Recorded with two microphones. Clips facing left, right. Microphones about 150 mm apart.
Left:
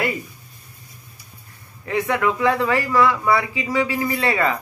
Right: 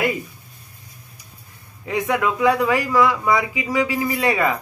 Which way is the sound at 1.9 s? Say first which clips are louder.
Even; 15° right (ahead or behind).